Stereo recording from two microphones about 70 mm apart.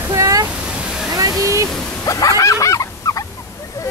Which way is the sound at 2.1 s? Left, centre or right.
Left.